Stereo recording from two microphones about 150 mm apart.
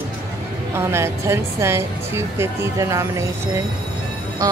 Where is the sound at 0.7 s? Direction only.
20° right (ahead or behind).